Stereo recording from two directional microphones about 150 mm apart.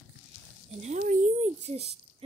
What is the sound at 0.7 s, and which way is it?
Speech, 55° right (ahead or behind).